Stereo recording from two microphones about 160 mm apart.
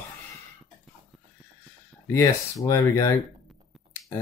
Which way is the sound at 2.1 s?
20° left (ahead or behind).